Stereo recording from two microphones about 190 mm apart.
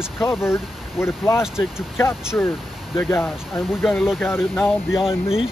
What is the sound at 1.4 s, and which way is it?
Speech, 5° right (ahead or behind).